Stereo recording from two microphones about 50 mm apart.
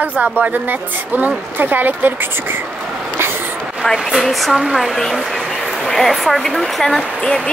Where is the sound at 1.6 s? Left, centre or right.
Right.